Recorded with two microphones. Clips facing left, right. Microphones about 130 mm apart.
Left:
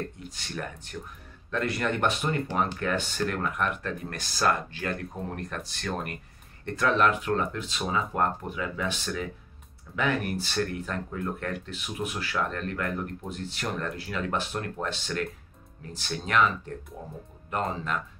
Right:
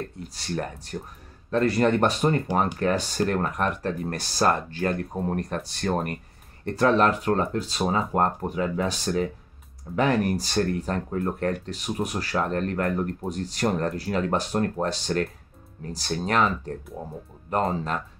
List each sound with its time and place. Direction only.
0.2 s speech: 35° right (ahead or behind)